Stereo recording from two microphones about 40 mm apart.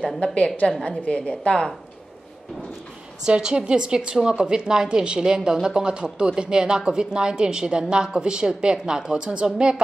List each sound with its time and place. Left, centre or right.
0.2 s a woman's voice: left
3.3 s speech: right